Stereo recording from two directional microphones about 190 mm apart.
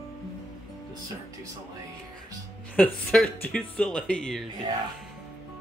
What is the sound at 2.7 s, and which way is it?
Speech, 5° left (ahead or behind).